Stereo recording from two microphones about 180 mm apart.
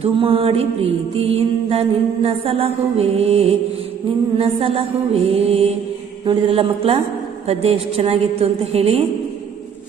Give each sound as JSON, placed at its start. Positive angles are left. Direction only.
{"t": 0.0, "sound": "mantra", "side_deg": -30}